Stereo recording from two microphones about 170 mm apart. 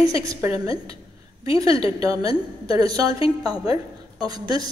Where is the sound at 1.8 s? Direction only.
20° right (ahead or behind).